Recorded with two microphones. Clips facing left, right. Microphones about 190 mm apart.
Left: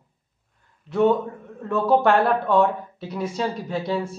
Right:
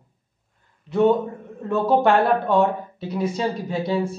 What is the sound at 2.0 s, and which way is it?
Speech, centre (ahead or behind).